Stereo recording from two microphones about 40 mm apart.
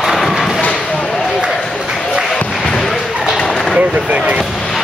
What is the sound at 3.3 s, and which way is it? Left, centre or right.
Bird, centre.